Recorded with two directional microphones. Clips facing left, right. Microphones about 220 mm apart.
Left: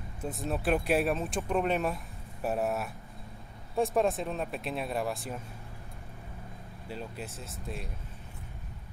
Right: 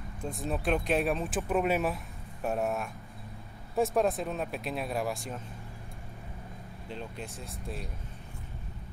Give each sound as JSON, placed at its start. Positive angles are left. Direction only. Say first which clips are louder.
{"t": 0.2, "sound": "speech", "louder": "even", "side_deg": 0}
{"t": 6.9, "sound": "speech", "louder": "left 1 dB", "side_deg": 5}